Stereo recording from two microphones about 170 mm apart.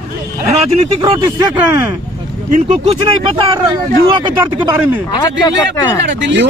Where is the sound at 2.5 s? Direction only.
40° right (ahead or behind).